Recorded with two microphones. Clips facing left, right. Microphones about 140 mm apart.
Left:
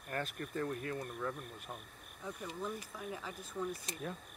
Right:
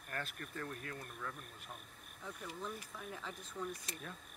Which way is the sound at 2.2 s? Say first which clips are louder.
Left 4 dB; 10° left (ahead or behind).